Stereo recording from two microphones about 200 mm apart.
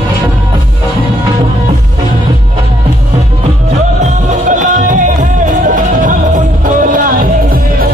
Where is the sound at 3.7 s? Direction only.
35° right (ahead or behind).